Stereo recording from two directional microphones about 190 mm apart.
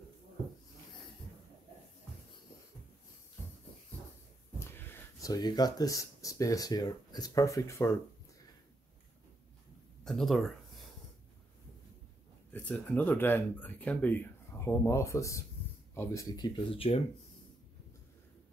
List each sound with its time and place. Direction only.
4.6 s speech: 10° left (ahead or behind)
10.0 s speech: centre (ahead or behind)
12.5 s speech: 10° left (ahead or behind); by 17.0 s 30° left (ahead or behind)